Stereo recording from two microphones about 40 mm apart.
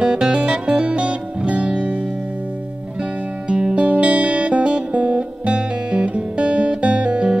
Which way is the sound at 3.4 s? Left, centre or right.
Right.